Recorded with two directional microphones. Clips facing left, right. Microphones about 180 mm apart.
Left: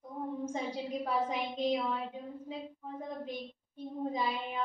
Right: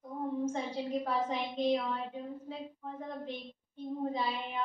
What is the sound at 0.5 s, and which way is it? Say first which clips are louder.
A woman's voice: right 1 dB; 10° left (ahead or behind).